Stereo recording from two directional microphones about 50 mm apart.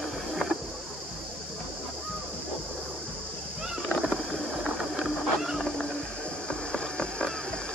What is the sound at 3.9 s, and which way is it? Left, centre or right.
Rowboat, centre.